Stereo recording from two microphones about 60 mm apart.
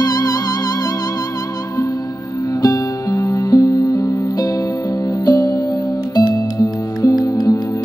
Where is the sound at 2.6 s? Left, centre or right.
Left.